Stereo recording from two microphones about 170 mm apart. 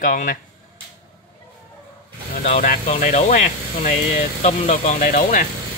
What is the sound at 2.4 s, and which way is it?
Speech, 50° left (ahead or behind).